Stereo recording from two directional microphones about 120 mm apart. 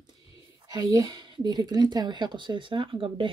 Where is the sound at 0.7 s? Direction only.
30° right (ahead or behind).